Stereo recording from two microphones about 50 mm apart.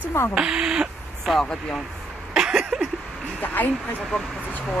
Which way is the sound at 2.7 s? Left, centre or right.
Centre.